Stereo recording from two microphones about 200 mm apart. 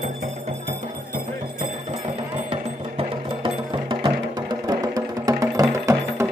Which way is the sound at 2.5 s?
25° right (ahead or behind).